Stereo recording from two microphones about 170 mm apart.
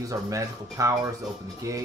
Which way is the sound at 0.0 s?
20° right (ahead or behind).